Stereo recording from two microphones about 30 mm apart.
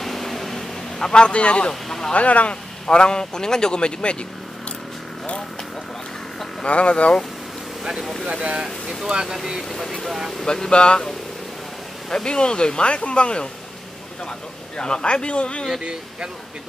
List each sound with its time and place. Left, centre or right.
0.0 s a sound: centre
1.1 s speech: left
1.7 s speech: left
2.1 s speech: left
2.9 s a man's voice: left
6.6 s speech: left
8.3 s speech: right
10.4 s a man's voice: left
12.3 s speech: left
14.8 s speech: left
15.8 s speech: right